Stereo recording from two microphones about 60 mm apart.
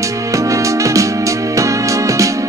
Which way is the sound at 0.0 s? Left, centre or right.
Right.